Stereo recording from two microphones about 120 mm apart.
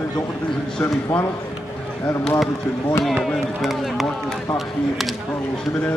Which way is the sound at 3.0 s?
Centre (ahead or behind).